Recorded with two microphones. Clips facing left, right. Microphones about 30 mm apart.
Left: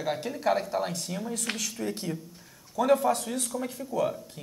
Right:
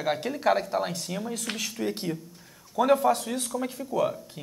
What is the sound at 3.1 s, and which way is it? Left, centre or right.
Speech, centre.